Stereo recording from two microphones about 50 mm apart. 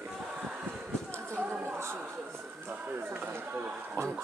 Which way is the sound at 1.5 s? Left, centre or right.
Right.